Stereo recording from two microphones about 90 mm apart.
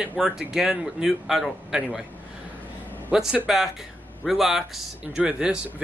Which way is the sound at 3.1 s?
5° right (ahead or behind).